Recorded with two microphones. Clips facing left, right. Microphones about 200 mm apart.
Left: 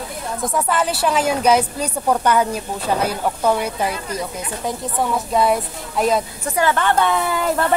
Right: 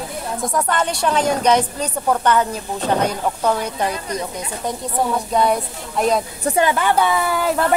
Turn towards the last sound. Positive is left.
turn(degrees=-5)  # may be behind; listen again after turning